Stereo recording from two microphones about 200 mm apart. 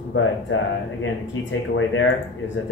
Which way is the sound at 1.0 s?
70° left (ahead or behind).